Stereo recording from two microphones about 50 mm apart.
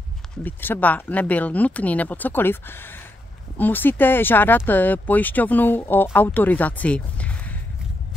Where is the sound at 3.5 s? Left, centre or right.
Left.